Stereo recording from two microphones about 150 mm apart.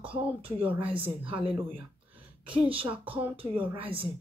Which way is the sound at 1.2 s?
35° right (ahead or behind).